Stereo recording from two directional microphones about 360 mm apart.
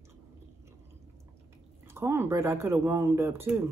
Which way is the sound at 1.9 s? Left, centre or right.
Centre.